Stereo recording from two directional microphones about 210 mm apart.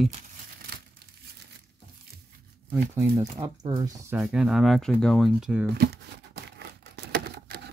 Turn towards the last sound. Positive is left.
turn(degrees=-50)  # may be behind; listen again after turning